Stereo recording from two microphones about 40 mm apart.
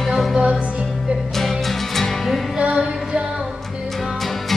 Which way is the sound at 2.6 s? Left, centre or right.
Right.